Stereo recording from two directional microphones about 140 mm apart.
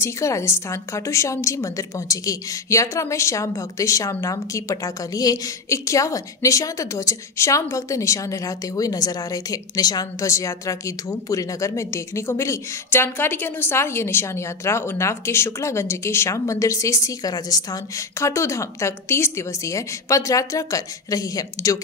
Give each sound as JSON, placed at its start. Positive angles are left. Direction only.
{"t": 0.0, "sound": "a woman's voice", "side_deg": 20}